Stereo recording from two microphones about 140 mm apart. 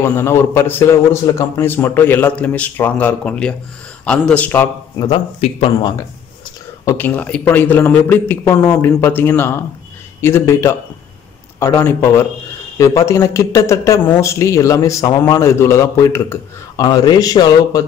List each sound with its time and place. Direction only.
0.0 s a man's voice: 20° left (ahead or behind)
4.9 s a man's voice: 30° left (ahead or behind)
6.8 s a sound: 20° left (ahead or behind)
7.2 s a man's voice: 10° left (ahead or behind); by 17.8 s 25° left (ahead or behind)